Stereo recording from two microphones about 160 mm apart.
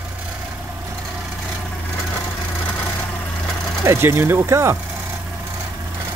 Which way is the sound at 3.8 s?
15° right (ahead or behind).